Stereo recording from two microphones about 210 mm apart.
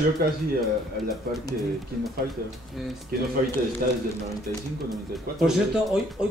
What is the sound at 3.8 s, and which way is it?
Speech, 45° right (ahead or behind).